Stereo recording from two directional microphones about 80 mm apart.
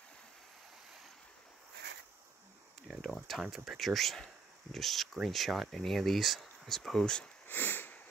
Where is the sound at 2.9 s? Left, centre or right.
Centre.